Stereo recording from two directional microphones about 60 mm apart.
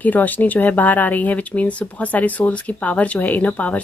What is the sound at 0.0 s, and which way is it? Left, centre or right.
Speech, left.